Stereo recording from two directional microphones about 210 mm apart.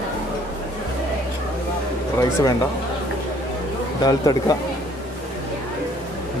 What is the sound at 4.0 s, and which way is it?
Speech, 20° left (ahead or behind).